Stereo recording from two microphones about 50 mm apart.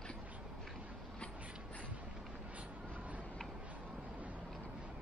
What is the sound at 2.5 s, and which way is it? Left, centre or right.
Vehicle, right.